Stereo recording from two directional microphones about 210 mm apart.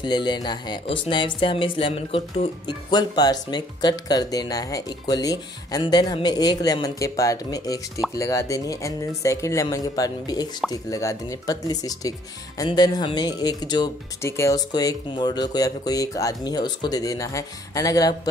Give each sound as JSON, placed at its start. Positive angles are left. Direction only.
{"t": 0.0, "sound": "speech", "side_deg": 20}